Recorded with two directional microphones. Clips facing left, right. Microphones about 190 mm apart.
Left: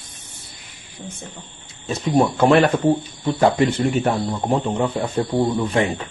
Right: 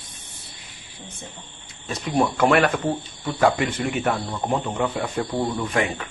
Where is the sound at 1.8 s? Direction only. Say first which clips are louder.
Left 4 dB; 25° left (ahead or behind).